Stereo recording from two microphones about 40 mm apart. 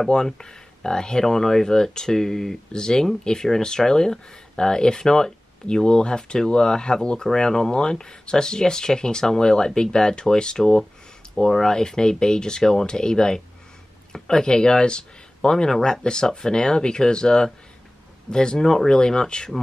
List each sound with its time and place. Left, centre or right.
0.1 s speech: centre